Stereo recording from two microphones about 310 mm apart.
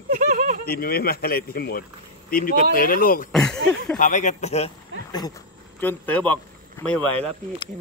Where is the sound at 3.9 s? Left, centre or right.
Left; by 6.4 s centre.